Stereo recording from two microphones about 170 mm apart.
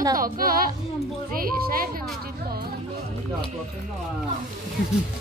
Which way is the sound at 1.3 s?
60° right (ahead or behind).